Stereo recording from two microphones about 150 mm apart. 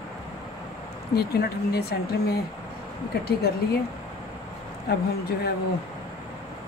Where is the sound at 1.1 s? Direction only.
90° left.